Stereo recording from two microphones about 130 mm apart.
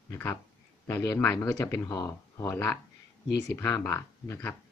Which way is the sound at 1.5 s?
25° left (ahead or behind).